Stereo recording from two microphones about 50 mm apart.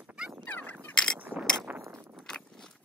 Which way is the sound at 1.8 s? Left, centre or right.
Right.